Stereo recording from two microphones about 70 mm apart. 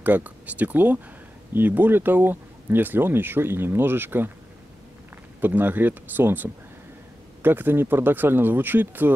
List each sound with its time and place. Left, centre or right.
0.0 s speech: right
5.4 s speech: right